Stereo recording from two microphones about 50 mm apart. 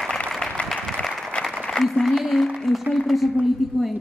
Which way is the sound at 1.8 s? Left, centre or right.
Centre.